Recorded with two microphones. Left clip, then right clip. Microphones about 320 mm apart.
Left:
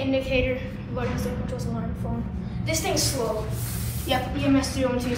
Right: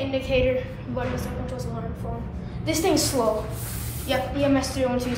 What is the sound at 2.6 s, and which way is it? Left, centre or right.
A woman's voice, centre.